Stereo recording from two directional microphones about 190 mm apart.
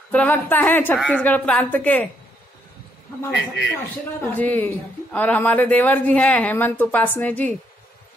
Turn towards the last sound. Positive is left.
turn(degrees=10)  # may be behind; listen again after turning